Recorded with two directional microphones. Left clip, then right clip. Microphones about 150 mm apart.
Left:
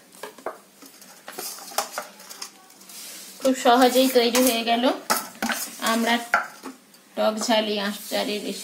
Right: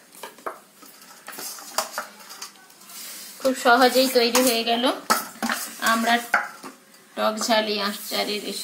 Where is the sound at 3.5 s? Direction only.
5° left (ahead or behind).